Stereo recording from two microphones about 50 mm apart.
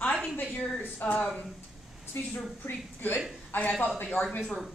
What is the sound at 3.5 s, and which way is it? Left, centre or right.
Speech, left.